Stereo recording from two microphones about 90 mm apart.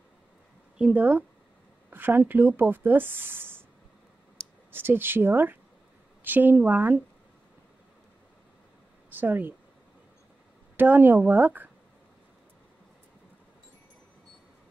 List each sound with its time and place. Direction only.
0.7 s speech: 15° right (ahead or behind)
4.6 s speech: 25° right (ahead or behind)
9.1 s speech: 20° right (ahead or behind)
10.8 s speech: 20° right (ahead or behind)